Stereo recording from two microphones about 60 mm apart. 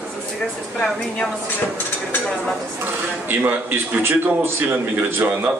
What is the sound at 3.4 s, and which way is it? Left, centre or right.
A man's voice, right.